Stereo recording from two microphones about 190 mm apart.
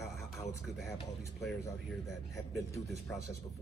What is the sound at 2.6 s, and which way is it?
Speech, 15° left (ahead or behind).